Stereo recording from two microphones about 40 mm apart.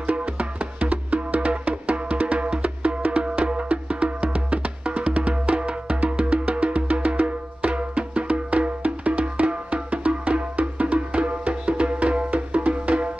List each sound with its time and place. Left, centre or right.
0.0 s music: right